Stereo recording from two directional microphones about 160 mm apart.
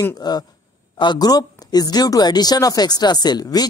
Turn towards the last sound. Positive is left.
turn(degrees=25)  # may be behind; listen again after turning